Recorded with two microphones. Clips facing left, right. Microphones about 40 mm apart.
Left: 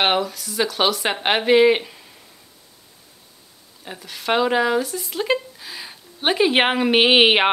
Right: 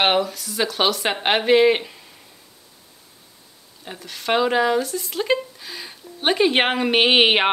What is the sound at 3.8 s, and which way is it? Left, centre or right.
Speech, centre.